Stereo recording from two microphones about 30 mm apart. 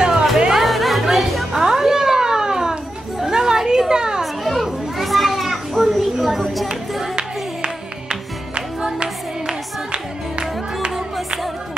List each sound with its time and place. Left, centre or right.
0.0 s music: right
0.6 s music: centre
1.6 s a sound: centre
3.2 s chatter: right
3.9 s children playing: right
4.2 s children playing: centre
7.2 s music: right